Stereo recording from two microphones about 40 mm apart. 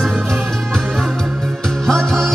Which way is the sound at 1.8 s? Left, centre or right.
Centre.